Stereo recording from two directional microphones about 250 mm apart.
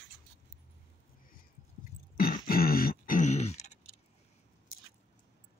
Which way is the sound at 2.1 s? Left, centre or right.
Left.